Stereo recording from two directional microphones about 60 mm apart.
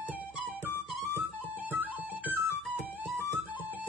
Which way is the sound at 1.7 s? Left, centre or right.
Right.